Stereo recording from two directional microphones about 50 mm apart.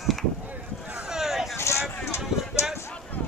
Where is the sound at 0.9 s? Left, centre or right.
Centre.